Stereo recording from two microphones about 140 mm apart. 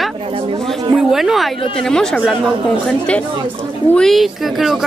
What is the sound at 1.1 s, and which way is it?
A woman's voice, centre (ahead or behind).